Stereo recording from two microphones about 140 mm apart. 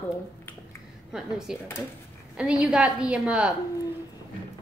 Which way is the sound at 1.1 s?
5° right (ahead or behind).